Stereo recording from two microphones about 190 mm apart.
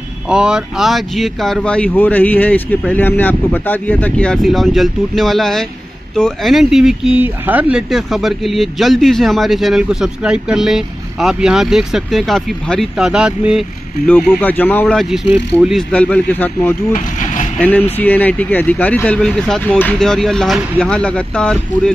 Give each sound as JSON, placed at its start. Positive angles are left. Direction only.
{"t": 0.3, "sound": "speech", "side_deg": -5}
{"t": 14.0, "sound": "speech", "side_deg": 10}
{"t": 16.9, "sound": "vehicle", "side_deg": 40}
{"t": 17.6, "sound": "speech", "side_deg": 10}